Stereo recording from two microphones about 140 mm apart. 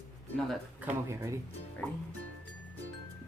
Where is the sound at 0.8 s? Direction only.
20° right (ahead or behind).